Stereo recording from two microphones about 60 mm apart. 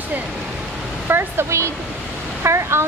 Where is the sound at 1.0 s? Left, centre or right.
Right.